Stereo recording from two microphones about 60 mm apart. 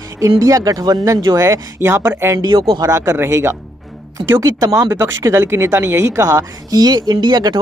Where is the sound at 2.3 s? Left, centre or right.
Right.